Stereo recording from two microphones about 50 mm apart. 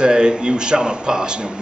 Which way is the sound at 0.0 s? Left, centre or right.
Centre.